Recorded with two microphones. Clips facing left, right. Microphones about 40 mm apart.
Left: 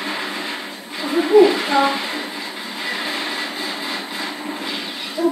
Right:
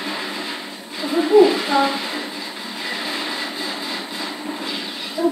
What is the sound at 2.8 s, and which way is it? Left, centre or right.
Vehicle, centre.